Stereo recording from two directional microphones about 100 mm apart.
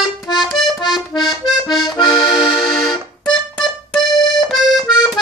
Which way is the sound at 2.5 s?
5° left (ahead or behind).